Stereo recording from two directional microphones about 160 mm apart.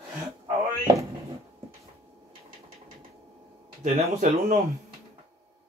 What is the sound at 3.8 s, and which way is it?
Speech, 50° right (ahead or behind).